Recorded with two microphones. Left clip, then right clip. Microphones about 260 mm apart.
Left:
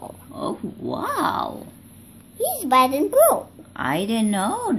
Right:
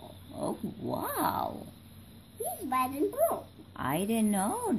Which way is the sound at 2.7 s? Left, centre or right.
Left.